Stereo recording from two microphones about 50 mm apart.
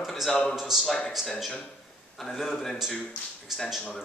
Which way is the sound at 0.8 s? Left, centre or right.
Centre.